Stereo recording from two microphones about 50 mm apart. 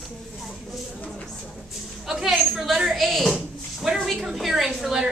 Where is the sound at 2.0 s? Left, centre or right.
Centre.